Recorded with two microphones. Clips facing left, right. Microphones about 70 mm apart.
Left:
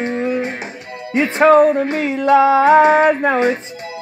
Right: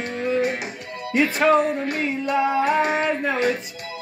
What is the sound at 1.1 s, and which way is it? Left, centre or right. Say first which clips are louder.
Speech: left 6 dB; left.